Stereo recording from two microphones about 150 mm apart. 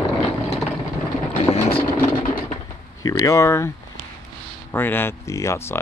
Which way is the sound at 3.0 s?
20° left (ahead or behind).